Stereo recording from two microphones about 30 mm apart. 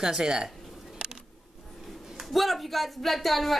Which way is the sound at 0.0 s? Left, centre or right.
Centre.